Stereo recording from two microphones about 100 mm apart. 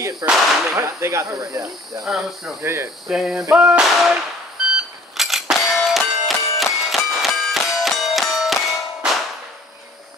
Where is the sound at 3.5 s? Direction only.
10° right (ahead or behind).